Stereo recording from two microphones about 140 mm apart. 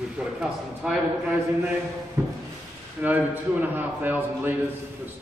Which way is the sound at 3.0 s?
10° right (ahead or behind).